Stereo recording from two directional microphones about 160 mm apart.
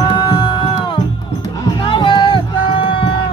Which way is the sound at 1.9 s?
30° left (ahead or behind).